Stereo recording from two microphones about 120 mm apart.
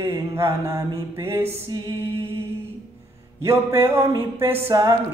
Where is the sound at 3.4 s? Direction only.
20° right (ahead or behind).